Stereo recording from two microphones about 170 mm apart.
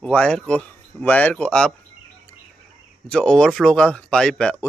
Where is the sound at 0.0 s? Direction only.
5° left (ahead or behind).